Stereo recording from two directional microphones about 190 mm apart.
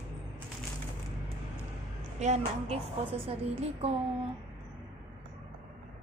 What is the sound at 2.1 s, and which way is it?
A woman's voice, 35° right (ahead or behind).